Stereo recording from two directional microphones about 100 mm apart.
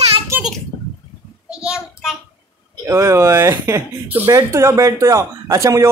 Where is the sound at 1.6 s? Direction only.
10° right (ahead or behind).